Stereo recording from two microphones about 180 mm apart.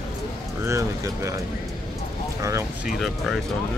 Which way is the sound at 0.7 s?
15° right (ahead or behind).